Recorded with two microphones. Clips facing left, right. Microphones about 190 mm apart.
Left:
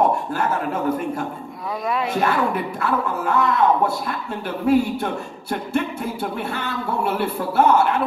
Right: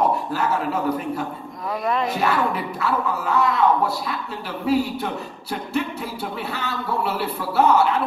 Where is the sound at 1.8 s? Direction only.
Centre (ahead or behind).